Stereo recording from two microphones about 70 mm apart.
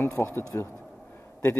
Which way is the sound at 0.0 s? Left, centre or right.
Left.